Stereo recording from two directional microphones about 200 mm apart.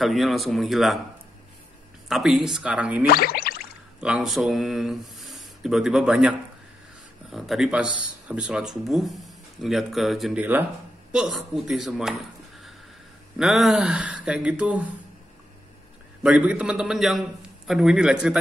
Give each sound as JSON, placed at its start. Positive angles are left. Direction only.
{"t": 0.0, "sound": "speech", "side_deg": 0}
{"t": 2.0, "sound": "speech", "side_deg": 0}
{"t": 3.1, "sound": "a sound", "side_deg": 50}
{"t": 4.0, "sound": "speech", "side_deg": -5}
{"t": 13.4, "sound": "speech", "side_deg": 0}
{"t": 16.2, "sound": "speech", "side_deg": -5}